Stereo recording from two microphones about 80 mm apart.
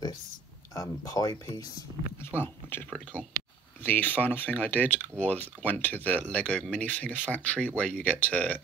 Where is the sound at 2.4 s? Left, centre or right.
Left.